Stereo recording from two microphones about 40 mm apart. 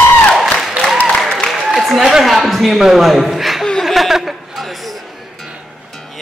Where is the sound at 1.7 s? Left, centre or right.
Centre.